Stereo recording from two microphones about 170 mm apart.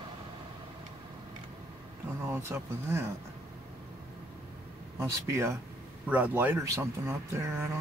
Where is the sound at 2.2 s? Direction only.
15° right (ahead or behind).